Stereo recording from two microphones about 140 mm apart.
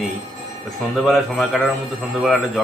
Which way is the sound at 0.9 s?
Centre (ahead or behind).